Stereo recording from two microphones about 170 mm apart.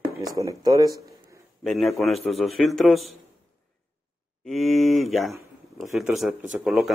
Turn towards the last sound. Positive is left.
turn(degrees=0)  # may be behind; listen again after turning